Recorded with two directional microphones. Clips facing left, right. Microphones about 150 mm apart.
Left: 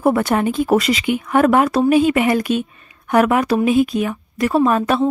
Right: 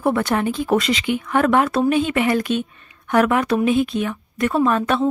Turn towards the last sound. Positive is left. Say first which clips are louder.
# left 3 dB
turn(degrees=10)  # may be behind; listen again after turning